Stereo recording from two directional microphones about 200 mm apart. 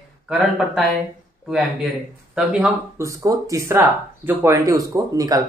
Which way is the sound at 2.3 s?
5° right (ahead or behind).